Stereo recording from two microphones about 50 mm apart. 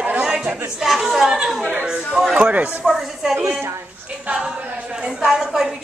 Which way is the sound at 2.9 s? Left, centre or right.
Centre.